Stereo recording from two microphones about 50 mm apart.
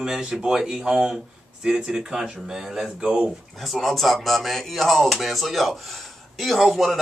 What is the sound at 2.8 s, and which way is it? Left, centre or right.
Speech, centre.